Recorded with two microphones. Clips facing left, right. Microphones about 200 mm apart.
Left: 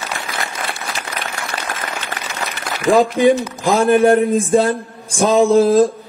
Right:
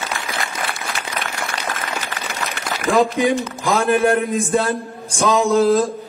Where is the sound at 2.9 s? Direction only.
35° left (ahead or behind).